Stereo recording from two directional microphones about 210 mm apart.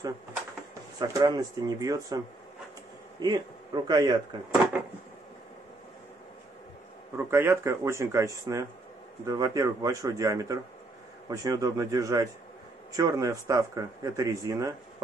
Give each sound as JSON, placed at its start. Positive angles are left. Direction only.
{"t": 0.9, "sound": "a man's voice", "side_deg": -20}
{"t": 7.2, "sound": "speech", "side_deg": -10}